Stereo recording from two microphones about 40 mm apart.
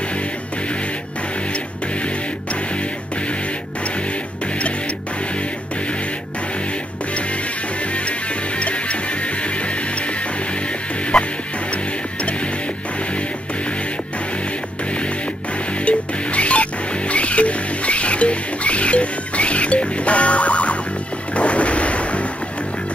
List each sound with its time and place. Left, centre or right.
8.5 s music: left
11.1 s music: centre
15.8 s music: left
21.4 s a sound: left